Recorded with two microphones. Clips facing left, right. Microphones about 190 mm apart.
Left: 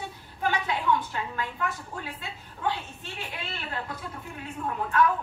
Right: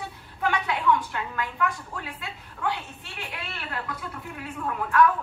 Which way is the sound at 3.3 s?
30° left (ahead or behind).